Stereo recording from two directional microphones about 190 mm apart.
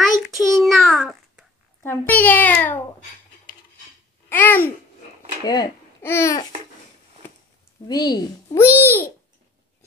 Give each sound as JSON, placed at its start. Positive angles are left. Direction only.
{"t": 0.0, "sound": "a sound", "side_deg": 0}
{"t": 1.8, "sound": "a child's voice", "side_deg": 10}
{"t": 4.3, "sound": "babbling", "side_deg": 10}
{"t": 5.4, "sound": "speech", "side_deg": 20}
{"t": 7.9, "sound": "a child's voice", "side_deg": 20}